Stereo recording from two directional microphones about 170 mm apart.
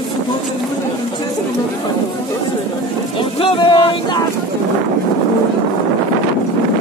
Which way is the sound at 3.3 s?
30° left (ahead or behind).